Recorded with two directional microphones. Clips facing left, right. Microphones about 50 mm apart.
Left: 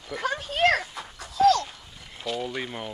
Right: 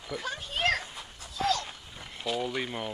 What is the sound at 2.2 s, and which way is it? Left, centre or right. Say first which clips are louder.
Speech: left 1 dB; centre.